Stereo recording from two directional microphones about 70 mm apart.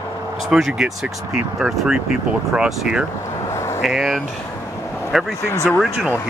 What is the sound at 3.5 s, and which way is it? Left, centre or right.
Vehicle, left.